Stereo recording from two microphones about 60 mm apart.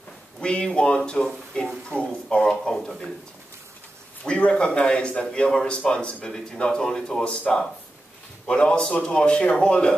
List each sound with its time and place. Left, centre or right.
0.4 s a man's voice: centre
4.2 s a man's voice: centre